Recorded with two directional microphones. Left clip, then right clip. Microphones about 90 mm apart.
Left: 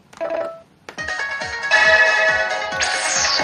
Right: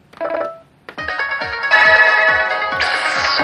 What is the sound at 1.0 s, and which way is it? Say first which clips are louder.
Music: right 4 dB; 30° left (ahead or behind).